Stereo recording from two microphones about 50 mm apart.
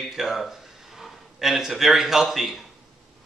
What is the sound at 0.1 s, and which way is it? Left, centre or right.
Speech, centre.